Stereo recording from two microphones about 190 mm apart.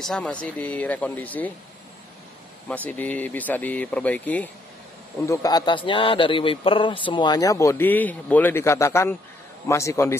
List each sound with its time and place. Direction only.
0.0 s speech: 5° left (ahead or behind)
2.7 s speech: 10° left (ahead or behind)